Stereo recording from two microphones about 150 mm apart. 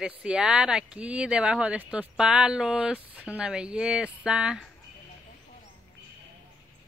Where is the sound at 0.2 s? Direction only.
5° right (ahead or behind).